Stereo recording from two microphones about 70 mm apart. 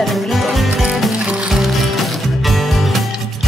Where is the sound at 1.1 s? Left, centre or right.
Centre.